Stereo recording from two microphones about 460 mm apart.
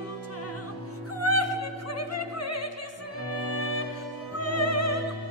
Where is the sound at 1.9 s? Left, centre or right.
Left.